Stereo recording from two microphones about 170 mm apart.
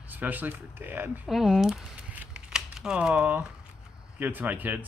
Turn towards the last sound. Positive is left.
turn(degrees=-10)  # may be behind; listen again after turning